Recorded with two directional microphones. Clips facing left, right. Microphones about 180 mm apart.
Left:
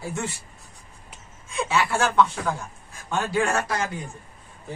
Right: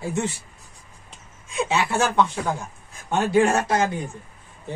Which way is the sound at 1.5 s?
20° right (ahead or behind).